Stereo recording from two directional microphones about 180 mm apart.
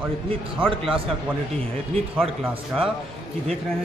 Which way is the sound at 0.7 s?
30° right (ahead or behind).